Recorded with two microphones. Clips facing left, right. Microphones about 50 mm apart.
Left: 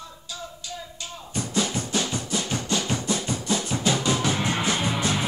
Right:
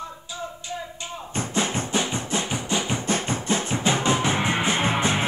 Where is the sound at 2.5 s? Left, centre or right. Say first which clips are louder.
Right 1 dB; centre.